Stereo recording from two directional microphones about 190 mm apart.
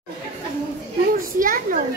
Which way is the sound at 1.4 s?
45° right (ahead or behind).